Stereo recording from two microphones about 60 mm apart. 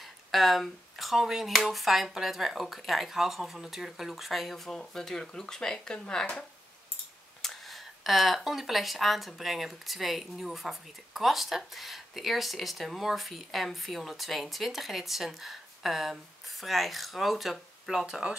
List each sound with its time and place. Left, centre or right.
0.0 s speech: centre
7.4 s speech: centre